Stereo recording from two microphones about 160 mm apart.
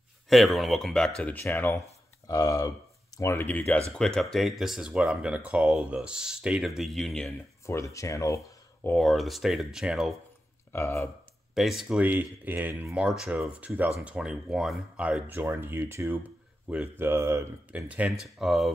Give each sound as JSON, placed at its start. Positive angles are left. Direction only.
{"t": 0.3, "sound": "speech", "side_deg": 0}
{"t": 7.6, "sound": "speech", "side_deg": 20}
{"t": 8.9, "sound": "speech", "side_deg": 0}
{"t": 10.7, "sound": "speech", "side_deg": 15}
{"t": 11.5, "sound": "speech", "side_deg": 0}